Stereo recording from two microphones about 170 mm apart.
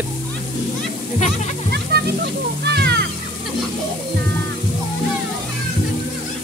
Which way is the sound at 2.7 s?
75° right (ahead or behind).